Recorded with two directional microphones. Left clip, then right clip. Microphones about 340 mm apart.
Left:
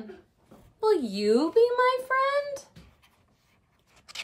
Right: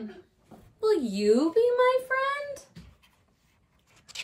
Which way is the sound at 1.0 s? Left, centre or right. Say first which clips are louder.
Right 1 dB; centre.